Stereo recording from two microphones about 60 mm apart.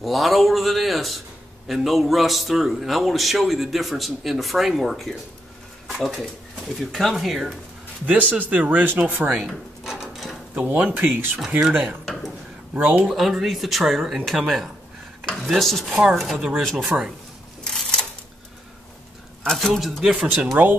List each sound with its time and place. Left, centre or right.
0.0 s a man's voice: centre
8.1 s speech: right
9.3 s drawer open or close: centre
10.5 s speech: right
13.0 s a man's voice: centre
16.7 s speech: right
17.6 s a sound: centre
19.4 s a man's voice: centre
20.6 s speech: right